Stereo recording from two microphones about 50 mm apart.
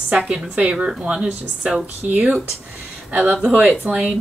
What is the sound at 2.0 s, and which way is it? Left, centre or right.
Speech, right.